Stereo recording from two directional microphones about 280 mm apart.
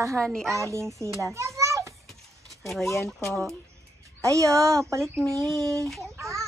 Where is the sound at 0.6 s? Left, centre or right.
Centre.